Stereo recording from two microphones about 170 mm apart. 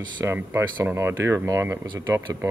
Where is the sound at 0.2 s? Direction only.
15° right (ahead or behind).